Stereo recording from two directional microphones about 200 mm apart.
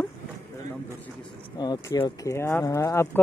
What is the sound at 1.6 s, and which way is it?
Speech, 20° left (ahead or behind).